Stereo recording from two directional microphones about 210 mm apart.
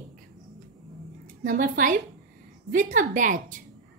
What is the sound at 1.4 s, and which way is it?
A woman's voice, 40° right (ahead or behind).